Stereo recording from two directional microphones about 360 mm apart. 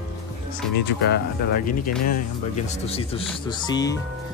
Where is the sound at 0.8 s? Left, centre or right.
Left; by 4.0 s centre.